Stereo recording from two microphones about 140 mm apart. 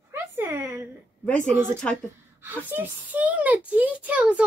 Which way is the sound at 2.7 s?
10° right (ahead or behind).